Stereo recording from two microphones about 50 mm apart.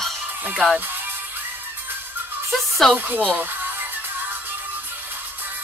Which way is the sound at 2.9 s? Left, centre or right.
Right.